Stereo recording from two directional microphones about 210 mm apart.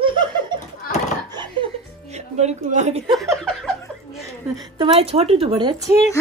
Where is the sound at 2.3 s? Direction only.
35° right (ahead or behind).